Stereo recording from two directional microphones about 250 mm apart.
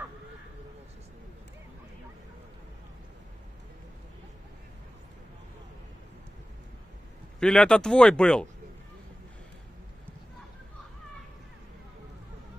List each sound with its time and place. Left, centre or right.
7.3 s speech: centre